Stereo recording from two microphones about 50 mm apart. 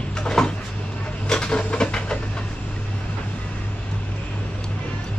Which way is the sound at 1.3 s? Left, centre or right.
Centre.